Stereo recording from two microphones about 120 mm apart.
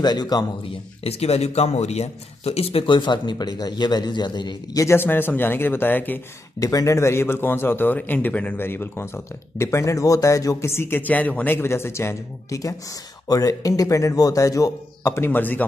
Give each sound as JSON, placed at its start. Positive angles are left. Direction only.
{"t": 0.0, "sound": "speech", "side_deg": 35}
{"t": 0.7, "sound": "speech", "side_deg": 55}
{"t": 4.8, "sound": "speech", "side_deg": 20}
{"t": 6.6, "sound": "a man's voice", "side_deg": 30}